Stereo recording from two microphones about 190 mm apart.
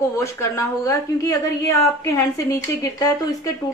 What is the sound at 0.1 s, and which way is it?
A woman's voice, 15° left (ahead or behind).